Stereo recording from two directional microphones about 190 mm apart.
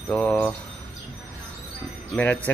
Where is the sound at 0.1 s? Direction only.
5° left (ahead or behind).